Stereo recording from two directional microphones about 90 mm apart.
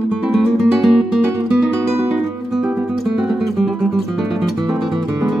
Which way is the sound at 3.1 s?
Centre (ahead or behind).